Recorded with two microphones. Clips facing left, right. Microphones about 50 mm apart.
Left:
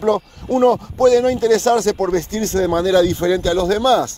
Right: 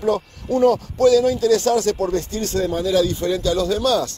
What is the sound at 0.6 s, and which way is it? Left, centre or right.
Speech, left.